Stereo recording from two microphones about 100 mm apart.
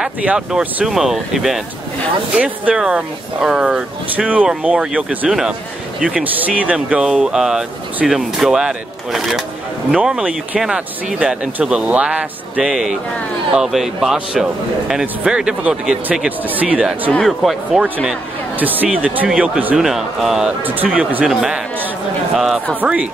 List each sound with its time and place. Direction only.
0.0 s speech: 10° right (ahead or behind)
17.2 s speech: centre (ahead or behind)
18.6 s speech: 15° right (ahead or behind)
20.6 s speech: 15° right (ahead or behind)
22.8 s speech: 10° right (ahead or behind)